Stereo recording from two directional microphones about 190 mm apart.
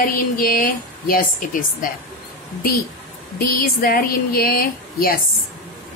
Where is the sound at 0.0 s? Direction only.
50° left (ahead or behind).